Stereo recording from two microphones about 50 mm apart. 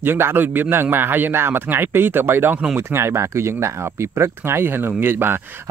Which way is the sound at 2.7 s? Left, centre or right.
Right.